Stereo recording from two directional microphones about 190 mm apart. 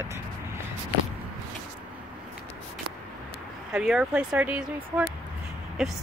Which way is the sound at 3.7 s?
5° right (ahead or behind).